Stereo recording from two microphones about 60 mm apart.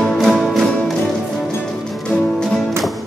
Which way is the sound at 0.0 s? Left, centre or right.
Centre.